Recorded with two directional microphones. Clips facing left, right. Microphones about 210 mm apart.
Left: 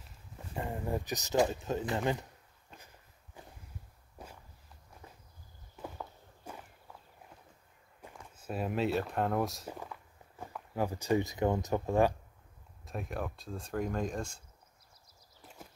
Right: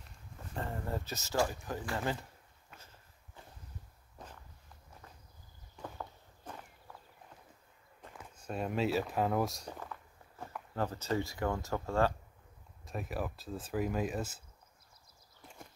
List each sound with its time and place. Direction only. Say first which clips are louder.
0.6 s speech: left 3 dB; 15° left (ahead or behind)
2.7 s a sound: left 2 dB; 15° left (ahead or behind)
4.2 s walk: left 1 dB; 10° left (ahead or behind)
5.8 s walk: left 1 dB; 10° left (ahead or behind)
8.4 s speech: left 1 dB; 5° left (ahead or behind)
10.4 s speech: left 2 dB; 10° left (ahead or behind)
12.8 s speech: even; centre (ahead or behind)
15.4 s horse: left 1 dB; 5° left (ahead or behind)